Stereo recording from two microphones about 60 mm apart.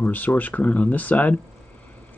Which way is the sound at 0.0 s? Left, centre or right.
Left.